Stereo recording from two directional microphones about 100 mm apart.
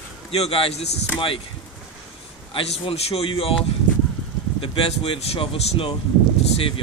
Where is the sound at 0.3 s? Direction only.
75° left (ahead or behind); by 1.0 s 90° left.